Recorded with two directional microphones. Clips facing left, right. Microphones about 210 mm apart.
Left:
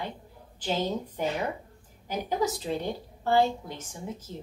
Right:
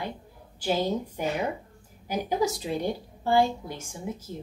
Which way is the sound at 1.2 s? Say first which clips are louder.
Right 1 dB; 10° right (ahead or behind).